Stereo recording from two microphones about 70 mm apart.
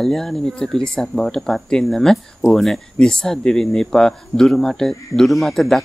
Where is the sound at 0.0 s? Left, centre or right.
Centre.